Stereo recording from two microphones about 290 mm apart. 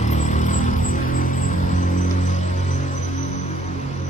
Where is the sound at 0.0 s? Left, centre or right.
Left.